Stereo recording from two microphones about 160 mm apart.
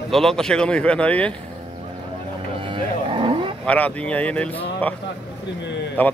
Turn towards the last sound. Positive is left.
turn(degrees=10)  # may be behind; listen again after turning